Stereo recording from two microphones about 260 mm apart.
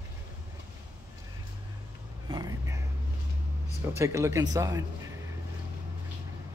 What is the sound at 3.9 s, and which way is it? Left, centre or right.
Speech, centre.